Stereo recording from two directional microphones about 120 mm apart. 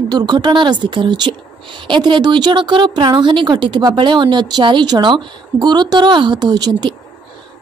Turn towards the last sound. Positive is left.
turn(degrees=-35)  # may be behind; listen again after turning